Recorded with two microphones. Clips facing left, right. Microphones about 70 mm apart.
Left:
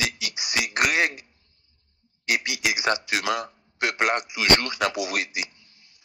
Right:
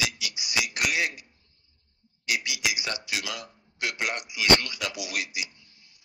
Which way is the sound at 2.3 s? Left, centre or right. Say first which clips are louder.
Left 4 dB; left.